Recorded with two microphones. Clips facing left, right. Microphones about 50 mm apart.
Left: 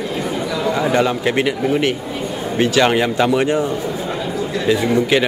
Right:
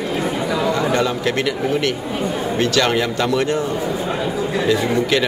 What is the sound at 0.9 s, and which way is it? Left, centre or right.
Speech, centre.